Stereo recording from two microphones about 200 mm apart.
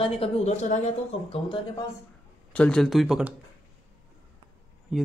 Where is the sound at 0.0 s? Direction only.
30° left (ahead or behind).